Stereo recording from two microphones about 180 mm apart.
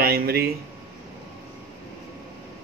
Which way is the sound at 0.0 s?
60° right (ahead or behind).